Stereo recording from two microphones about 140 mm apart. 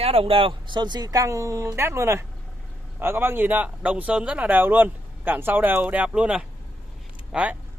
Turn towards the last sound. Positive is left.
turn(degrees=-10)  # may be behind; listen again after turning